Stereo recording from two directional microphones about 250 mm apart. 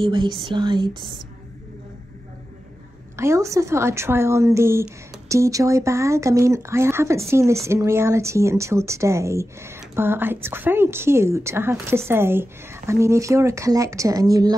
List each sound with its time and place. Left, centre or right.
0.0 s speech: centre
3.2 s speech: centre